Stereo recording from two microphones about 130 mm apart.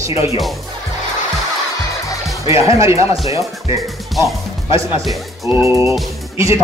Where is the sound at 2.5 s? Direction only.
25° right (ahead or behind).